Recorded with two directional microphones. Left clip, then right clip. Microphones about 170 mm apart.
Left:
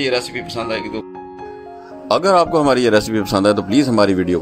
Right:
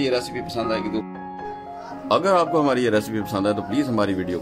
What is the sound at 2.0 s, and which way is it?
Speech, 40° left (ahead or behind).